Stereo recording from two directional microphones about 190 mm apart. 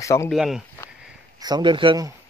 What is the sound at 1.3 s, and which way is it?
Speech, 20° right (ahead or behind).